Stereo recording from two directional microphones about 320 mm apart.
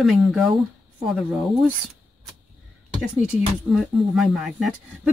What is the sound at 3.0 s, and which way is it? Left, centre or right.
Speech, centre.